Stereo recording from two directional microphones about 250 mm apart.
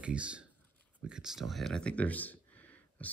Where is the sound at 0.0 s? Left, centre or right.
Centre.